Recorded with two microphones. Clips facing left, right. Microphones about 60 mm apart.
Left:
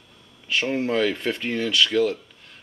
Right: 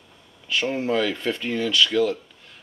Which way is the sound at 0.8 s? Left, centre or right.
Left.